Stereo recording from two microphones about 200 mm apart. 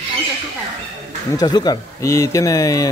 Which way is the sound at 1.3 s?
20° left (ahead or behind).